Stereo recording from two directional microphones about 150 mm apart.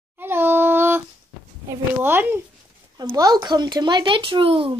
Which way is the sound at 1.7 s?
15° right (ahead or behind).